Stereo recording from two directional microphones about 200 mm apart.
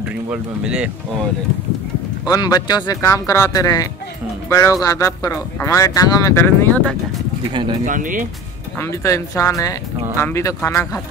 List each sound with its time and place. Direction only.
0.3 s speech: 5° right (ahead or behind)
2.2 s speech: 20° left (ahead or behind)
7.8 s speech: 40° right (ahead or behind)
8.7 s speech: 15° left (ahead or behind)